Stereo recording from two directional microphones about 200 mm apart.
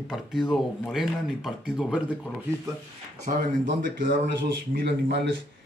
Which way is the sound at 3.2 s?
40° right (ahead or behind).